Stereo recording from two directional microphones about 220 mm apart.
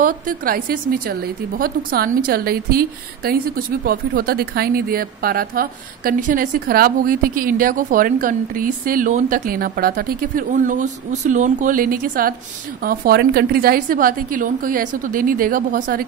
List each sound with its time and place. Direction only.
0.0 s a woman's voice: 40° right (ahead or behind)